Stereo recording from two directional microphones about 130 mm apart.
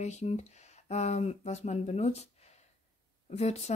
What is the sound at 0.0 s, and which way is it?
Speech, 60° left (ahead or behind).